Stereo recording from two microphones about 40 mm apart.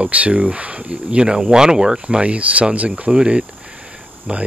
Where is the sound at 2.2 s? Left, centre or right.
Right.